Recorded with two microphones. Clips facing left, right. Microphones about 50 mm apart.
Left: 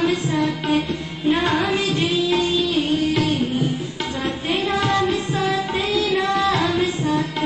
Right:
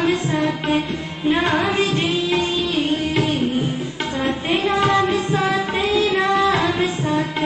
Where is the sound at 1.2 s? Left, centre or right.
Centre.